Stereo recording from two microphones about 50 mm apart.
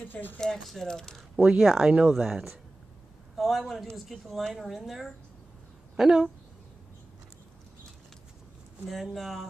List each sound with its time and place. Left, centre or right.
0.0 s speech: left
0.4 s speech: centre
1.3 s speech: right
1.6 s speech: centre
3.3 s speech: centre
5.9 s speech: centre
8.8 s speech: centre